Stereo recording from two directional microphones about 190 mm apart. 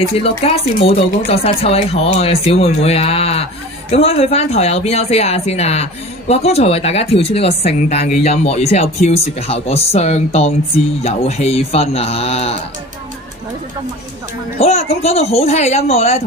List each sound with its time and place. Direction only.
0.4 s a woman's voice: 30° left (ahead or behind)
14.6 s a woman's voice: 35° left (ahead or behind)